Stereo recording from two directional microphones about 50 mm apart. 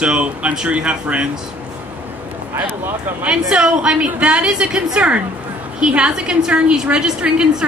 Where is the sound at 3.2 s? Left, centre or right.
Centre.